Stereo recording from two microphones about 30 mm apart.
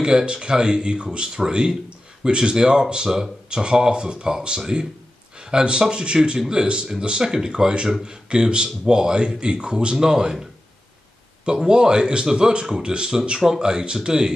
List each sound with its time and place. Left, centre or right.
0.0 s speech: right
9.9 s speech: right
11.4 s speech: right